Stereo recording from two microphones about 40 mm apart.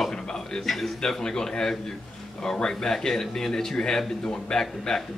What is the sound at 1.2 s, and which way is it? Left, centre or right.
Speech, centre.